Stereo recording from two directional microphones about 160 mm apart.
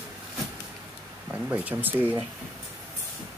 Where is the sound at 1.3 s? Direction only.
10° right (ahead or behind).